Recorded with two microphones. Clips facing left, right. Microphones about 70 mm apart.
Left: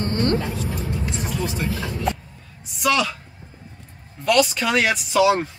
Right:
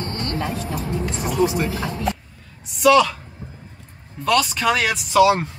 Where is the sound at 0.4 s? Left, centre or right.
Right.